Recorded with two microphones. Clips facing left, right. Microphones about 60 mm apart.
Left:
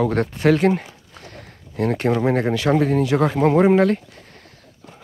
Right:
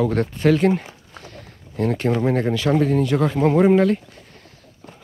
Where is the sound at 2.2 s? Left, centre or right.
Left.